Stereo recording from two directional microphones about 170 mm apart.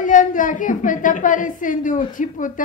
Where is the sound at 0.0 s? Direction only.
50° left (ahead or behind).